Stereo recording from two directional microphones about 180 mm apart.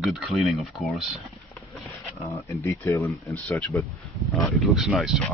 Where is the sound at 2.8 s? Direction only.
15° left (ahead or behind).